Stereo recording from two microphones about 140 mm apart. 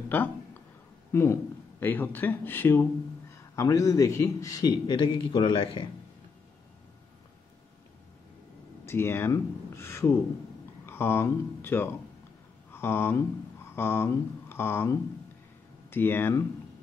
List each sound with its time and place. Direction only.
1.1 s speech: 20° left (ahead or behind); by 5.9 s 35° left (ahead or behind)
8.8 s speech: 15° left (ahead or behind)